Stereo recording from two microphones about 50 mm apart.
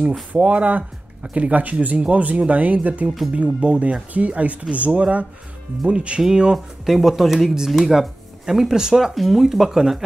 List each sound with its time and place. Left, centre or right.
0.4 s speech: right
6.5 s speech: centre